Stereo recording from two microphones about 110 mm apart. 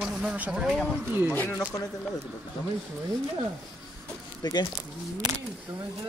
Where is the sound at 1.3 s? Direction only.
20° left (ahead or behind).